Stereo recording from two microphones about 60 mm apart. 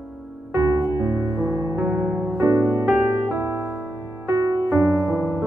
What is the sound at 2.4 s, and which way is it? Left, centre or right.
Music, right.